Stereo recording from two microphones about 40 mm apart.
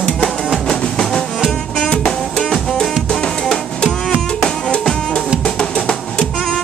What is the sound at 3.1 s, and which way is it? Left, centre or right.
Music, centre.